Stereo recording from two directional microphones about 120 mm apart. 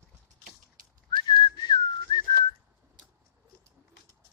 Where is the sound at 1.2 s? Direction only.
35° left (ahead or behind).